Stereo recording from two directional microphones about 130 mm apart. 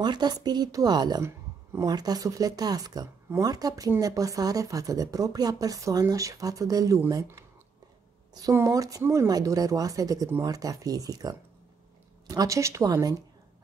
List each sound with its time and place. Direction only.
0.0 s a woman's voice: 35° right (ahead or behind)
1.2 s a sound: 20° right (ahead or behind)
1.9 s a woman's voice: 30° right (ahead or behind)
8.5 s speech: 25° right (ahead or behind)